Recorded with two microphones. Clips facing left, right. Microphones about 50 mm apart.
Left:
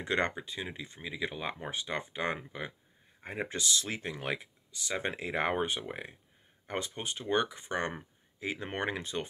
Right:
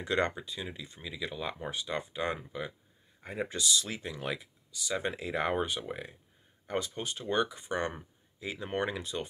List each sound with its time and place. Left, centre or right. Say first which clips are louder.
0.0 s speech: right 1 dB; left